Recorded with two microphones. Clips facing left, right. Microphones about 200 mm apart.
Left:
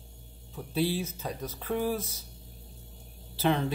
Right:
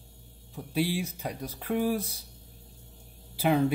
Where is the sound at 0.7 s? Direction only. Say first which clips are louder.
Even; 10° right (ahead or behind).